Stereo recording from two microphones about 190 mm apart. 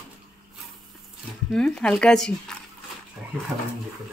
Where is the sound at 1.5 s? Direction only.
5° left (ahead or behind).